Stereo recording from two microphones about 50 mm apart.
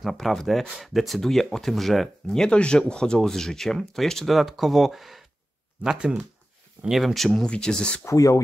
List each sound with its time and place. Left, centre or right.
0.0 s speech: centre
2.2 s speech: centre
4.3 s speech: centre
5.9 s speech: centre
7.4 s speech: centre
8.0 s speech: left